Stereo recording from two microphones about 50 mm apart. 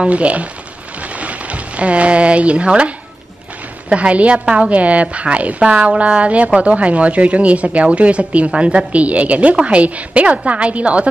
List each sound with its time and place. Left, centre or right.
0.0 s speech: right
1.0 s a sound: right
3.9 s speech: right